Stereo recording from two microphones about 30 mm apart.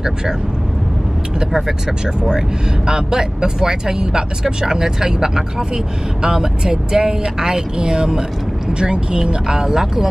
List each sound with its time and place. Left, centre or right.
2.9 s speech: right